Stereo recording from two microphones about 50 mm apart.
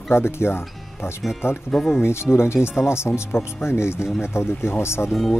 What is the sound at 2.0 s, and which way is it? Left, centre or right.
Speech, left.